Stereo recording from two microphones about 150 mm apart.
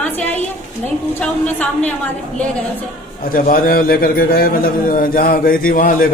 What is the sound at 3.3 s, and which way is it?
A man's voice, 70° left (ahead or behind).